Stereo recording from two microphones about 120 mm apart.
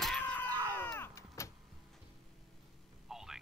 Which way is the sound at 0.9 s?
25° left (ahead or behind).